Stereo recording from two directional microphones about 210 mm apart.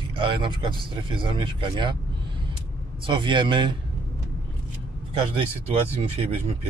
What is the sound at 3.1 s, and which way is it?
Speech, 20° right (ahead or behind).